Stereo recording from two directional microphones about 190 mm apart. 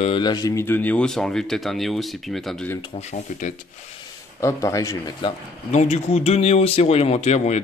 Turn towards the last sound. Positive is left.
turn(degrees=35)  # may be behind; listen again after turning